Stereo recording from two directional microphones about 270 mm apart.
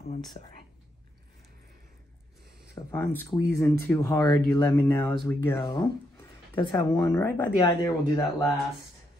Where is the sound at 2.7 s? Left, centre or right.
Centre.